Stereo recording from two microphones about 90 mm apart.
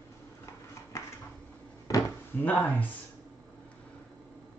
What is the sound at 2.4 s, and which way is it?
Speech, 20° left (ahead or behind).